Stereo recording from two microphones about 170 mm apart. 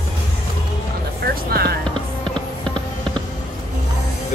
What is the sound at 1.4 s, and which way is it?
Speech, 65° right (ahead or behind).